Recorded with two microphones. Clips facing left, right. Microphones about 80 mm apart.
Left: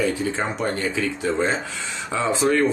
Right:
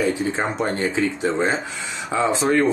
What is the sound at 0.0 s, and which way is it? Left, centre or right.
Speech, right.